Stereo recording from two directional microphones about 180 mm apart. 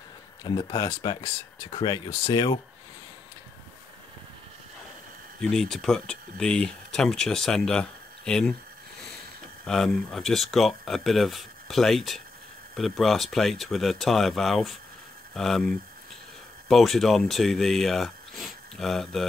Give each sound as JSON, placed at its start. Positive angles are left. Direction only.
{"t": 0.4, "sound": "speech", "side_deg": 25}
{"t": 5.4, "sound": "speech", "side_deg": 5}
{"t": 9.7, "sound": "speech", "side_deg": 0}